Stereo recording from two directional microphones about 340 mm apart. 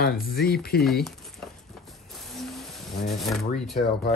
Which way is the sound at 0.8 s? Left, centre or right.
Centre.